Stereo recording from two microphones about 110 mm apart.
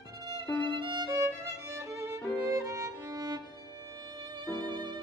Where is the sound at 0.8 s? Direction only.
40° right (ahead or behind).